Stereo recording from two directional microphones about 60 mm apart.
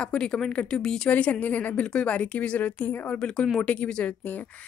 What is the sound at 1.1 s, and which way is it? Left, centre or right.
A woman's voice, left.